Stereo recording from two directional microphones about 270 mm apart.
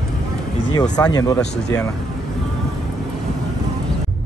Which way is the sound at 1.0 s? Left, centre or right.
Centre.